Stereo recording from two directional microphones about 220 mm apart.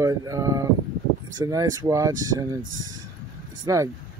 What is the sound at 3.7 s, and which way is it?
Speech, 15° right (ahead or behind).